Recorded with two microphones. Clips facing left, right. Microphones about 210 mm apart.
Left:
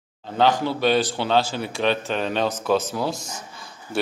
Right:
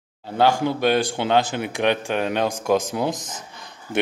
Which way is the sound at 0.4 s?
10° right (ahead or behind).